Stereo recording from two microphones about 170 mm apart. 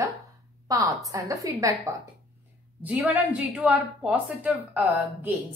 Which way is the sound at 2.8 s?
10° right (ahead or behind).